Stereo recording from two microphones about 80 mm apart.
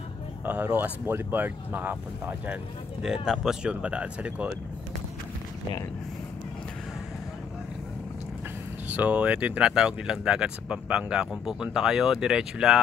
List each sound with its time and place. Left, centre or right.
0.5 s speech: right
3.0 s speech: centre
8.9 s speech: centre